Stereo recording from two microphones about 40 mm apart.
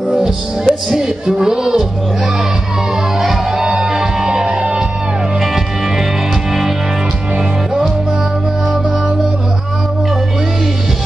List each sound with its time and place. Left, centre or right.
0.2 s music: centre
3.2 s music: centre; by 4.8 s right